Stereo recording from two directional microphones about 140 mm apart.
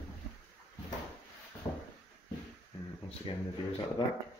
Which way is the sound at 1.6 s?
25° left (ahead or behind).